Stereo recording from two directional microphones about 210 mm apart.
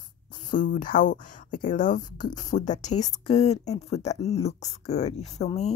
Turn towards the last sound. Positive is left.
turn(degrees=30)  # may be behind; listen again after turning